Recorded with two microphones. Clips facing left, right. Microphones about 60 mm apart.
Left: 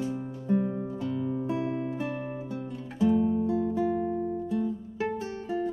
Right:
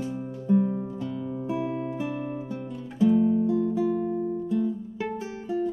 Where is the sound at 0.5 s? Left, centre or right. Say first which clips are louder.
Right 4 dB; centre.